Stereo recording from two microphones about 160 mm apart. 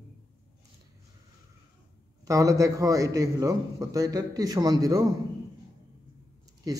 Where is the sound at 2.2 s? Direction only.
20° right (ahead or behind).